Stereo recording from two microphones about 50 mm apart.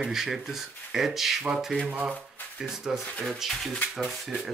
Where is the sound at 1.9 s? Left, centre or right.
Right.